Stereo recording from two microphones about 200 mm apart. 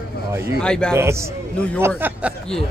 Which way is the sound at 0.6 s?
5° left (ahead or behind).